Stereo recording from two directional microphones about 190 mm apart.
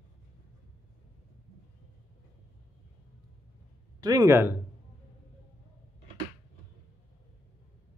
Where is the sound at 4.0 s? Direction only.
20° right (ahead or behind).